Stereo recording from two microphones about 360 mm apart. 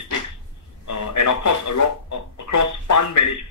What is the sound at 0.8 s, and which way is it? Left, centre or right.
Speech, left.